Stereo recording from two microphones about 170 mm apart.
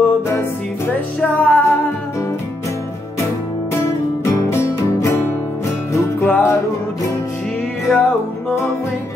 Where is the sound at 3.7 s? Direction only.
15° left (ahead or behind).